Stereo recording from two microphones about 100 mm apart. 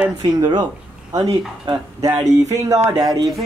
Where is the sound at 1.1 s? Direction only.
40° right (ahead or behind).